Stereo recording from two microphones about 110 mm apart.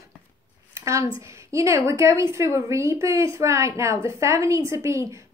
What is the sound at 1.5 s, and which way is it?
A woman's voice, 25° right (ahead or behind).